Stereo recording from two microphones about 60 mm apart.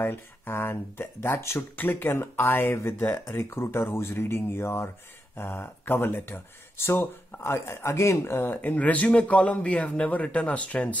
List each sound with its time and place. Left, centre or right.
0.0 s speech: left